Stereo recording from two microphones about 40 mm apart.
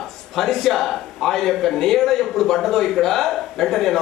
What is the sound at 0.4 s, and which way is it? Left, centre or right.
A man's voice, centre.